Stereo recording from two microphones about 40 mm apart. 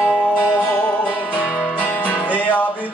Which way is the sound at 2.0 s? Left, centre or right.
Left.